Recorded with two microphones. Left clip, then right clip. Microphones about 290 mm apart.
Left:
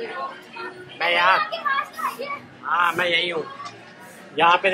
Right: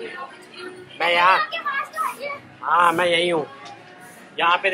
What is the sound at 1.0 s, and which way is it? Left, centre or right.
Speech, centre.